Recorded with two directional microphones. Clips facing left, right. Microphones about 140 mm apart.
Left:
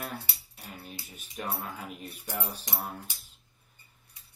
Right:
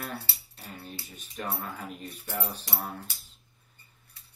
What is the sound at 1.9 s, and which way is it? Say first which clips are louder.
Speech: right 1 dB; 10° left (ahead or behind).